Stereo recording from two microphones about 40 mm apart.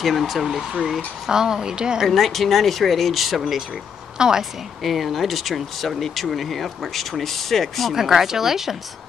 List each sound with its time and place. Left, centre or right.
0.0 s speech: centre
1.3 s speech: centre
2.0 s speech: centre
4.2 s speech: centre
4.8 s speech: centre
7.9 s speech: centre